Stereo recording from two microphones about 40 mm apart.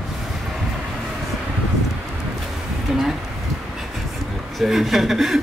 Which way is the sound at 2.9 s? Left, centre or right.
Centre.